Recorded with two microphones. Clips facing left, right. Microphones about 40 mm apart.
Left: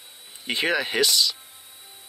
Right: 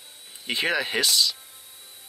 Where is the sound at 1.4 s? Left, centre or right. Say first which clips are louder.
Left 1 dB; left.